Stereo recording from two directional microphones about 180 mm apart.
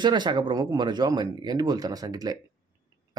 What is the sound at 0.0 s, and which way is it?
Speech, 25° right (ahead or behind).